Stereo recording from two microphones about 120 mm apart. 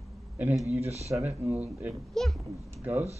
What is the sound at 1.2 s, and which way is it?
Speech, 15° right (ahead or behind).